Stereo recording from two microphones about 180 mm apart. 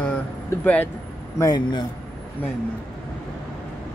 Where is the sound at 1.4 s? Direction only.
25° left (ahead or behind).